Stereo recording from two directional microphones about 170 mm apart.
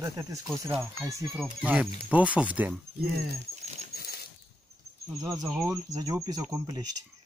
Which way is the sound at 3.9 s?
65° left (ahead or behind).